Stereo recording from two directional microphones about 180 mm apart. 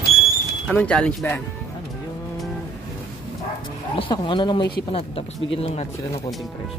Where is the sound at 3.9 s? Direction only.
30° left (ahead or behind).